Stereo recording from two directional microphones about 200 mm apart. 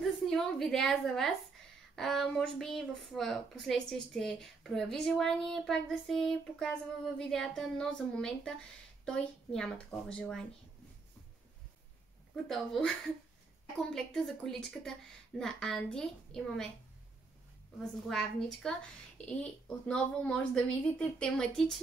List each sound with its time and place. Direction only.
0.0 s a woman's voice: centre (ahead or behind)
12.4 s a woman's voice: centre (ahead or behind)
18.0 s a woman's voice: 5° left (ahead or behind)